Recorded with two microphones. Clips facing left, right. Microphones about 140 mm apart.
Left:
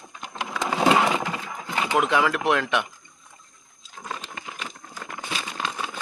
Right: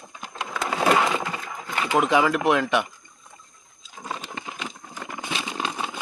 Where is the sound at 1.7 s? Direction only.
20° left (ahead or behind).